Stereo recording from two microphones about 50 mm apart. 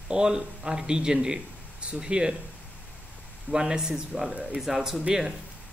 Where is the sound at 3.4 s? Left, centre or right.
Centre.